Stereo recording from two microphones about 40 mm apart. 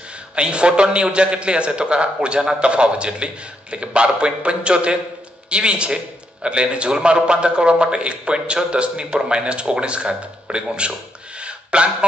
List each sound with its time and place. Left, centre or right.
0.4 s a man's voice: right